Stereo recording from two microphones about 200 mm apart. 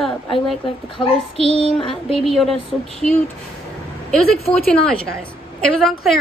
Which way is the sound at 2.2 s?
Centre (ahead or behind).